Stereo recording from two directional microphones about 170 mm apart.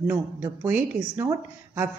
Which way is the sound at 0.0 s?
10° right (ahead or behind).